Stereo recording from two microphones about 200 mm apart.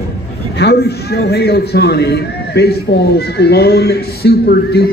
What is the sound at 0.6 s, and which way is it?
A man's voice, 55° left (ahead or behind).